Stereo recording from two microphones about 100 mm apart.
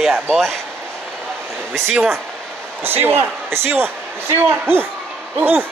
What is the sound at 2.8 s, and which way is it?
A man's voice, 20° right (ahead or behind).